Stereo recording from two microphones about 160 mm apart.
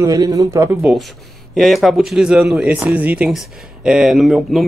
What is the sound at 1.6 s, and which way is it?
A man's voice, centre (ahead or behind).